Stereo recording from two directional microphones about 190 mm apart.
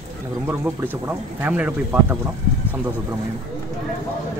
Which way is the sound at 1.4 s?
10° right (ahead or behind).